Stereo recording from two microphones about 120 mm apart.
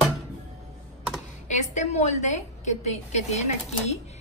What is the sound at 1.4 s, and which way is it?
A woman's voice, 75° left (ahead or behind).